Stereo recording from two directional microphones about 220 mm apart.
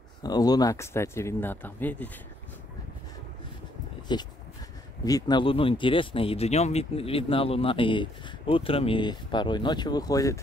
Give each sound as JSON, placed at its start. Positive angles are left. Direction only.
{"t": 0.2, "sound": "speech", "side_deg": 15}
{"t": 4.1, "sound": "speech", "side_deg": 20}